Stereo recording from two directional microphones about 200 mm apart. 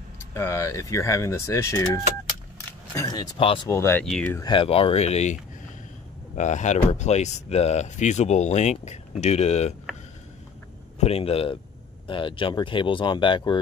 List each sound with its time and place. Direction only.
0.3 s speech: 15° left (ahead or behind)
2.9 s speech: 20° left (ahead or behind)
3.6 s speech: 15° left (ahead or behind)
4.4 s speech: 25° left (ahead or behind)
11.0 s speech: 30° left (ahead or behind)